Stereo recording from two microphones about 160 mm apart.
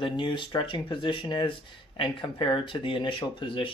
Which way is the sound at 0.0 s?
30° left (ahead or behind).